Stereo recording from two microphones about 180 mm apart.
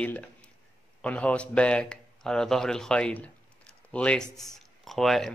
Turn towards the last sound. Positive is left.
turn(degrees=0)  # may be behind; listen again after turning